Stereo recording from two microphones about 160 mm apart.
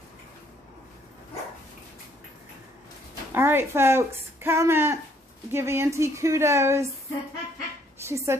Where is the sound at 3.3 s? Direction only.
15° right (ahead or behind).